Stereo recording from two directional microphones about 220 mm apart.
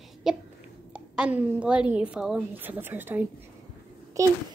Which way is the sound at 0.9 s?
5° right (ahead or behind).